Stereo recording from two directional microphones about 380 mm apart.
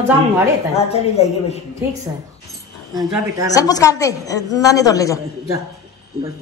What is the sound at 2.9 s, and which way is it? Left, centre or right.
Speech, centre.